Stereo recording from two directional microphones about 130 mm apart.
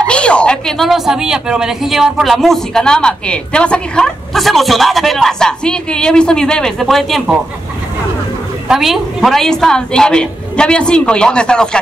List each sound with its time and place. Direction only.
0.0 s speech: 10° left (ahead or behind)
8.6 s speech: centre (ahead or behind)